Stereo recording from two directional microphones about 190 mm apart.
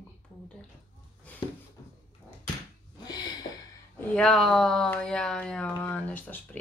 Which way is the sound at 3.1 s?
20° left (ahead or behind).